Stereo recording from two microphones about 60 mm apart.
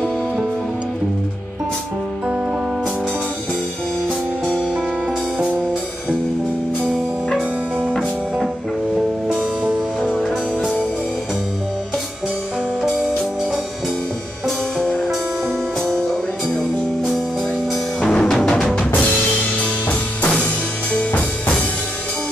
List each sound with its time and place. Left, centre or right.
9.3 s music: centre
14.8 s music: centre
18.0 s music: centre
19.6 s music: left
20.9 s drum kit: centre